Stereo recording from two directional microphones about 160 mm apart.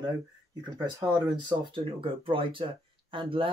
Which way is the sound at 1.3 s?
30° right (ahead or behind).